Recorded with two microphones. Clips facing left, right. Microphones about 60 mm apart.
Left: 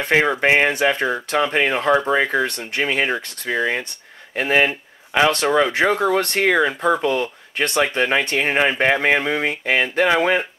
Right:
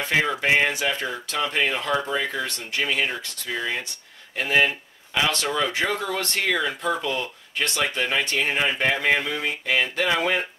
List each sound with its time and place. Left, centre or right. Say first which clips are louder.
0.0 s a man's voice: left 6 dB; left